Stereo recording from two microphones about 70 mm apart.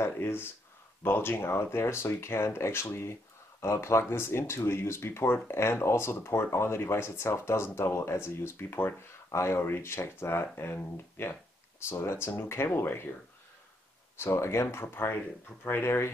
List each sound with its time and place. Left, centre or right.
0.0 s speech: left
14.1 s speech: left